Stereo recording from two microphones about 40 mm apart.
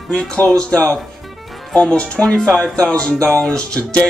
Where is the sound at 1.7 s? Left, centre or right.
Left.